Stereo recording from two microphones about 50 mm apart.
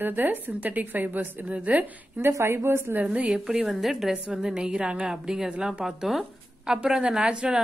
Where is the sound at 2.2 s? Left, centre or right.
Right.